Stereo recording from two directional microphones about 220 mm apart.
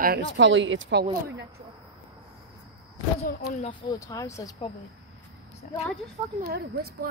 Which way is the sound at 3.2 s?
40° left (ahead or behind).